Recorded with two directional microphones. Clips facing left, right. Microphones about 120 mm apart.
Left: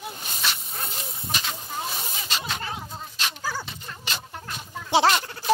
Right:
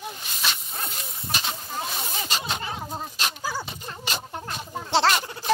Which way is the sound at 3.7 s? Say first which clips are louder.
Right 3 dB; 25° right (ahead or behind).